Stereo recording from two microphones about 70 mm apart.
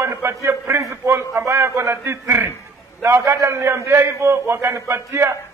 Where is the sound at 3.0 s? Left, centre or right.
Right.